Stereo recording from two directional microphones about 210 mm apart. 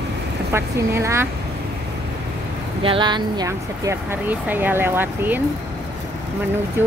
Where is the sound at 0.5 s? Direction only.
15° right (ahead or behind).